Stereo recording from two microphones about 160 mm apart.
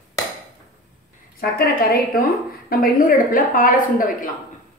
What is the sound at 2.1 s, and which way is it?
A woman's voice, 65° left (ahead or behind).